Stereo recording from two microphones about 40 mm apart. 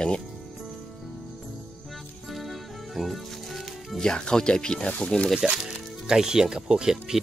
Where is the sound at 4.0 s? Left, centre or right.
Centre.